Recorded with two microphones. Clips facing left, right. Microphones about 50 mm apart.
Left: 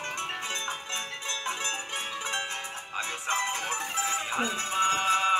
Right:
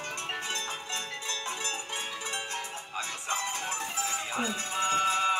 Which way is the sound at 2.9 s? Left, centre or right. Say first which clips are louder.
Left 4 dB; left.